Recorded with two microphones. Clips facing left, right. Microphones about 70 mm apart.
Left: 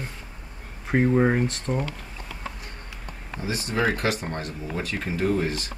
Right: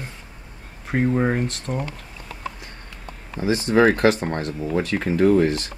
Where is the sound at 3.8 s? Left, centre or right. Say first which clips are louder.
Right 8 dB; right.